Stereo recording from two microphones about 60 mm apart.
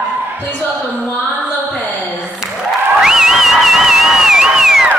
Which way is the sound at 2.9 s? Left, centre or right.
Centre.